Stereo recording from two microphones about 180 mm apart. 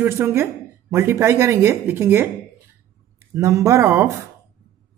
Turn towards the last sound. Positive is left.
turn(degrees=-15)  # may be behind; listen again after turning